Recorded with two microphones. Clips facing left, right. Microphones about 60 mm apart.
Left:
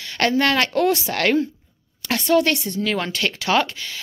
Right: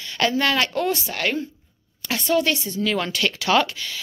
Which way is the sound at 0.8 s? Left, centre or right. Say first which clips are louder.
Left 4 dB; left.